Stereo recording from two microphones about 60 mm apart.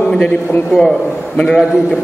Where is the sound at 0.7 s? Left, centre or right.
Centre.